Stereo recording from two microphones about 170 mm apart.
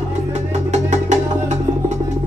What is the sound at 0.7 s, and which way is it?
Music, 40° right (ahead or behind).